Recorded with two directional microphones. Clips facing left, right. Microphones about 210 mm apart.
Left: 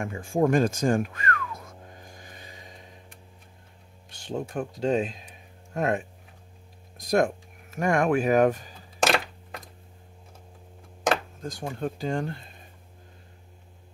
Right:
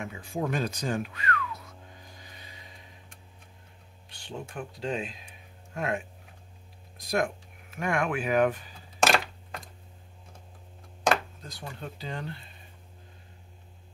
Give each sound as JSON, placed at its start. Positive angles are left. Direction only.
{"t": 0.0, "sound": "a sound", "side_deg": 50}
{"t": 4.1, "sound": "speech", "side_deg": 45}
{"t": 11.4, "sound": "speech", "side_deg": 50}